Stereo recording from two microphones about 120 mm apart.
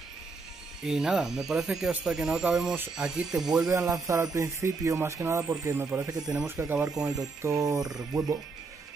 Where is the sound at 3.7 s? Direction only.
25° right (ahead or behind).